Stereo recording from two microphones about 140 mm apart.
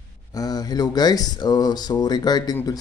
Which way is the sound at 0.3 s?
25° left (ahead or behind).